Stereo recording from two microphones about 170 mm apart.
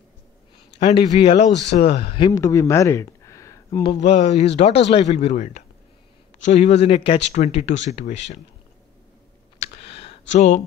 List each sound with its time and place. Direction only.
0.7 s speech: 35° left (ahead or behind); by 3.8 s 20° left (ahead or behind)
3.8 s speech: 35° left (ahead or behind)
9.6 s clicking: 35° left (ahead or behind)